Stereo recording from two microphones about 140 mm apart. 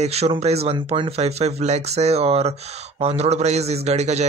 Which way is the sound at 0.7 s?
35° right (ahead or behind).